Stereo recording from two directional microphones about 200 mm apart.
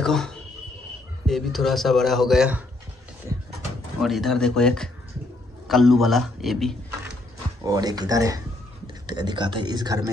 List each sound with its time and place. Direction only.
0.0 s speech: 5° left (ahead or behind)
4.0 s a man's voice: centre (ahead or behind)
7.6 s speech: 20° right (ahead or behind)